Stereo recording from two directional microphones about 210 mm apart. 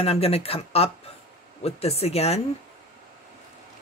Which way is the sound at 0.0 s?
30° left (ahead or behind).